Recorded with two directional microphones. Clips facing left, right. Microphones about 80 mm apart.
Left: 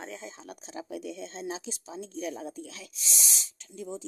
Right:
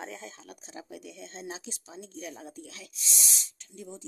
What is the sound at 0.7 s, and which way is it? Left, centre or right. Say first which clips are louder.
Speech: left 7 dB; left.